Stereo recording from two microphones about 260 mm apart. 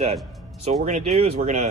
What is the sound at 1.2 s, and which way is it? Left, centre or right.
Speech, right.